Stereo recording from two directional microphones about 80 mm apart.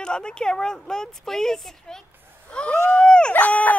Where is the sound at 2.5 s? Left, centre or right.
Centre.